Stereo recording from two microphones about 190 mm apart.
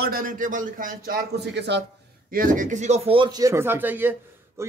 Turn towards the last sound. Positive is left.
turn(degrees=-10)  # may be behind; listen again after turning